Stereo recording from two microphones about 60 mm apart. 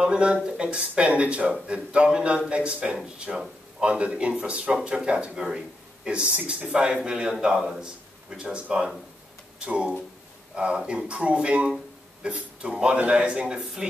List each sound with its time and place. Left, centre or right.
0.0 s speech: centre